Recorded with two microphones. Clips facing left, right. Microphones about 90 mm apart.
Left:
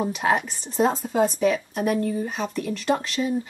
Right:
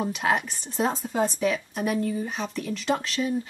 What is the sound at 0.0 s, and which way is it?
Speech, centre (ahead or behind).